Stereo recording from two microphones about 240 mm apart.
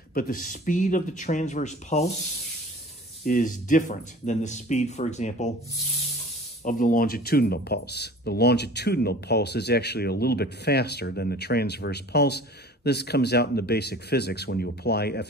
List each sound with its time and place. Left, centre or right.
0.1 s speech: left
3.3 s speech: left
6.6 s speech: left